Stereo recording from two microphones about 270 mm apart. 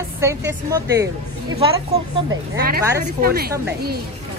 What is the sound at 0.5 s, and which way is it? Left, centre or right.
Speech, centre.